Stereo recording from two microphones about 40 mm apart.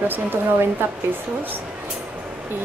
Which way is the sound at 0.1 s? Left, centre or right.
Right.